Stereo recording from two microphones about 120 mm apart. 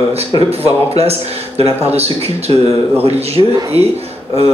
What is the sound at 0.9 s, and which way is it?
Speech, 55° right (ahead or behind).